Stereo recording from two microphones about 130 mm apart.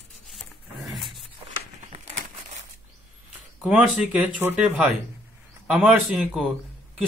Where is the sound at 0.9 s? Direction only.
Centre (ahead or behind).